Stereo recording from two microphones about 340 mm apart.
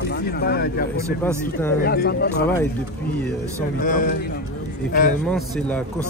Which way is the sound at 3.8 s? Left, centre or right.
Left.